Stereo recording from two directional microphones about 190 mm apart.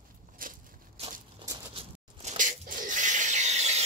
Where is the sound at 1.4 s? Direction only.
25° right (ahead or behind).